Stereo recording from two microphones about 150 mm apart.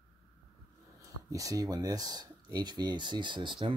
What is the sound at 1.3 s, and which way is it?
Speech, 20° right (ahead or behind).